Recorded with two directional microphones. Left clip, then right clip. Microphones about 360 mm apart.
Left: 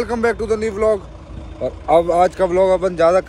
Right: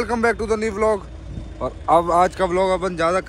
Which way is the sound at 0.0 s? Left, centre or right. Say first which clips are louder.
Left 1 dB; centre.